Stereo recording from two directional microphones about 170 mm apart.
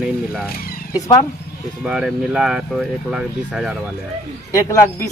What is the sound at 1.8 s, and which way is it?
Speech, 5° right (ahead or behind).